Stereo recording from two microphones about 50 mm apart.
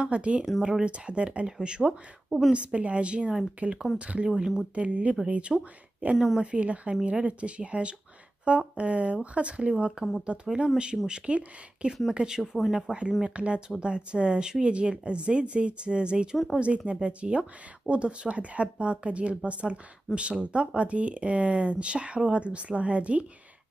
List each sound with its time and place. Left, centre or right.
0.0 s speech: right
4.3 s speech: centre
4.7 s speech: right
6.1 s a woman's voice: centre
6.4 s speech: right